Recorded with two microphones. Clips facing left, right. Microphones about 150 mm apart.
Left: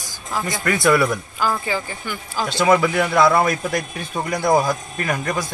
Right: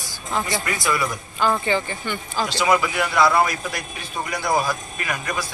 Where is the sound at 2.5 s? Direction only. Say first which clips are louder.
Left 5 dB; 50° left (ahead or behind).